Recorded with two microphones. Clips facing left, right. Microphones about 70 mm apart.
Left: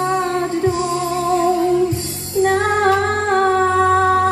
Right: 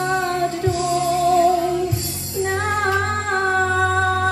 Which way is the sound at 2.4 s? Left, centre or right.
Left.